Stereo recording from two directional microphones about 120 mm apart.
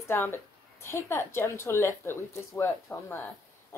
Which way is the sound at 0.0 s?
20° left (ahead or behind).